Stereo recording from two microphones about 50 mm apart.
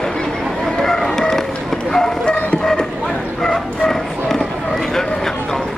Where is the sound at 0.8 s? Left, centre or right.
Centre.